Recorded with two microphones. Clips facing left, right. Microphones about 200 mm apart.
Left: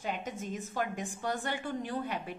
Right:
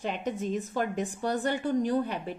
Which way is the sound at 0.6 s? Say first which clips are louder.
Right 5 dB; 40° right (ahead or behind).